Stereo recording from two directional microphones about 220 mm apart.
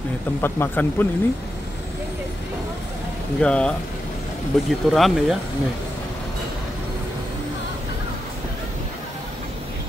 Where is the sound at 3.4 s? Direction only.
5° left (ahead or behind).